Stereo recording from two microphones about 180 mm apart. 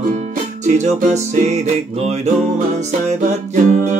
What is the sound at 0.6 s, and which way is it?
Music, 40° right (ahead or behind).